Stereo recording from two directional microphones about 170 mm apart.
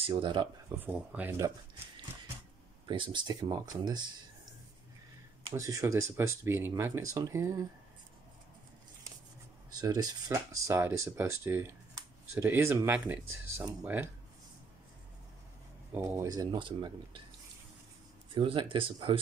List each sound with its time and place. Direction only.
0.0 s speech: 30° right (ahead or behind)
0.7 s speech: 10° right (ahead or behind)
2.9 s speech: 25° right (ahead or behind)
5.5 s speech: 20° right (ahead or behind)
9.7 s speech: 25° right (ahead or behind)
15.9 s speech: 15° right (ahead or behind)
18.3 s speech: 30° right (ahead or behind)